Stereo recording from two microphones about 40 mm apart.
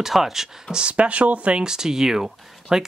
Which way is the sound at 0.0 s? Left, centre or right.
Centre.